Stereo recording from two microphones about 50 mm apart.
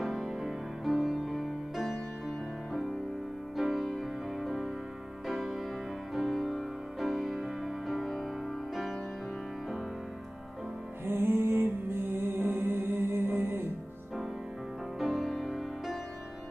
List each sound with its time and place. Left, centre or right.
0.0 s music: centre
11.1 s music: right
15.0 s music: centre